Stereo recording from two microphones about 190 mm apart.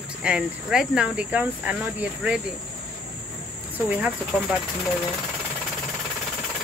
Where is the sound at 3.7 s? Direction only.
10° right (ahead or behind).